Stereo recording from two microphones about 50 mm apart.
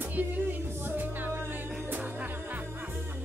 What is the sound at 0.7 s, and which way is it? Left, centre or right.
Music, right.